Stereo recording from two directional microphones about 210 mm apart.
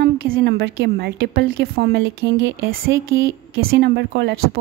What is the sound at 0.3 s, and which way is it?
Speech, 50° right (ahead or behind).